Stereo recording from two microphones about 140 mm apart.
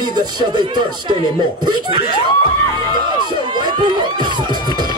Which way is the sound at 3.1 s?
30° right (ahead or behind).